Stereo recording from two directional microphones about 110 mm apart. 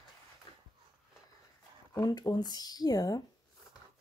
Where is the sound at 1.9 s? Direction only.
35° left (ahead or behind).